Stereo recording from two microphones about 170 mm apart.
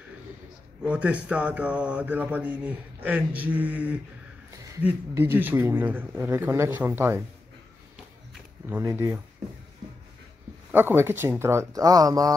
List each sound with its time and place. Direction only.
0.8 s speech: 10° right (ahead or behind)
8.6 s speech: 15° right (ahead or behind)
10.7 s speech: 10° right (ahead or behind)